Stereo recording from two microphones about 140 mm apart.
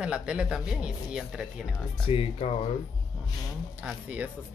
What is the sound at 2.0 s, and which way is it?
Speech, 40° left (ahead or behind).